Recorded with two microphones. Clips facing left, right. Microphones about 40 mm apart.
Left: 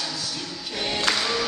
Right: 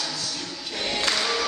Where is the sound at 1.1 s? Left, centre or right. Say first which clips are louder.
Even; centre.